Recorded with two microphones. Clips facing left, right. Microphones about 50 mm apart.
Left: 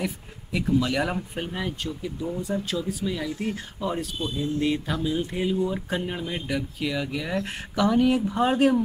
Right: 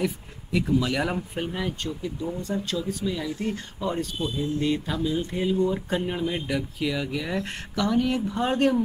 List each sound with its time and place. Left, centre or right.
0.0 s speech: centre